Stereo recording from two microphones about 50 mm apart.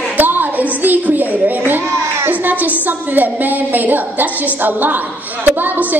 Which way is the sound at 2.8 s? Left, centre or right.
Right.